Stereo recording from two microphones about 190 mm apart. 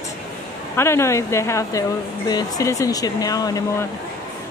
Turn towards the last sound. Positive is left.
turn(degrees=20)  # may be behind; listen again after turning